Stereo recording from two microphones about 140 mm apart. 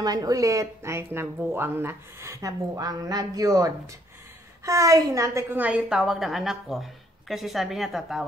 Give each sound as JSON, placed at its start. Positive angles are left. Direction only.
{"t": 0.0, "sound": "a woman's voice", "side_deg": -25}